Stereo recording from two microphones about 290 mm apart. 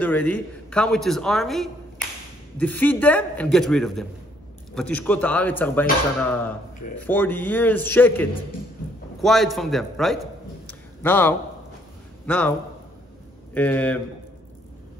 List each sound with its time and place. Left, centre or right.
0.0 s a man's voice: centre
10.7 s a sound: centre
12.3 s a man's voice: centre
13.6 s a man's voice: centre